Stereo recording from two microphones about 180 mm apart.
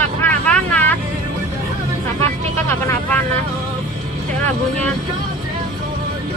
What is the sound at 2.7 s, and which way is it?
Vehicle, 10° left (ahead or behind).